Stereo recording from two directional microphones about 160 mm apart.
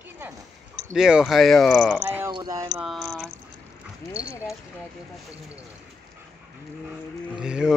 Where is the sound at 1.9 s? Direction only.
10° right (ahead or behind).